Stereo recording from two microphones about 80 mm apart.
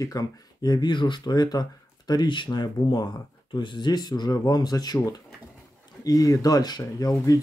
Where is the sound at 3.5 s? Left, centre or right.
Left.